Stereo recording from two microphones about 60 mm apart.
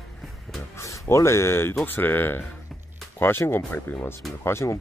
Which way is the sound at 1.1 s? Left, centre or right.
Left.